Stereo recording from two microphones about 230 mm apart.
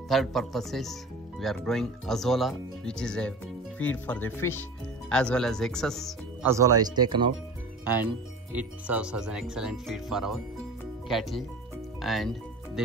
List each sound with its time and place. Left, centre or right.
0.1 s speech: centre
6.4 s speech: centre
7.8 s speech: centre
12.0 s music: centre